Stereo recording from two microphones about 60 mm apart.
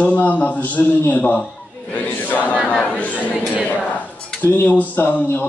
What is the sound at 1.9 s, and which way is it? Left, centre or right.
Battle cry, left.